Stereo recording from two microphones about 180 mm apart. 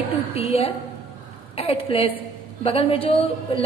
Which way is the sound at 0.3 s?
30° left (ahead or behind).